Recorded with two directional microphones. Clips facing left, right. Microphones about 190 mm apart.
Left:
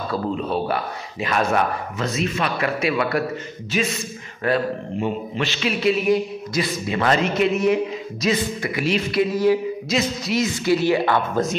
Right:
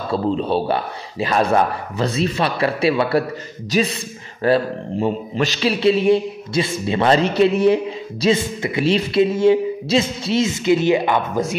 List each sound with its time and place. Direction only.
0.1 s a man's voice: 30° right (ahead or behind); by 11.5 s 15° right (ahead or behind)